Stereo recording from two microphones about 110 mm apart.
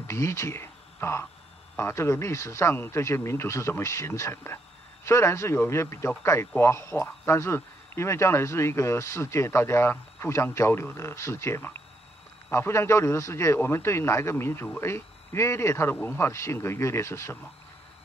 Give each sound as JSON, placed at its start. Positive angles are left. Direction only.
{"t": 0.0, "sound": "a man's voice", "side_deg": 25}